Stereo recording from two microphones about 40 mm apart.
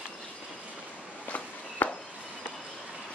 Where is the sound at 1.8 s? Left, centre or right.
Left.